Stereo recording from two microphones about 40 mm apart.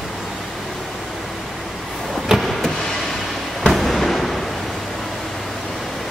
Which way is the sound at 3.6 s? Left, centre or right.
Centre.